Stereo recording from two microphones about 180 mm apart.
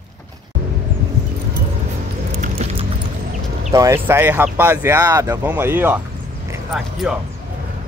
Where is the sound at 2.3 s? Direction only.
40° right (ahead or behind).